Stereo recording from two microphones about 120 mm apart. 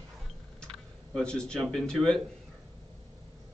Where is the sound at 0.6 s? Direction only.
5° left (ahead or behind).